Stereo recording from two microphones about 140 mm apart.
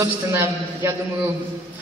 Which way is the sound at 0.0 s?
15° right (ahead or behind).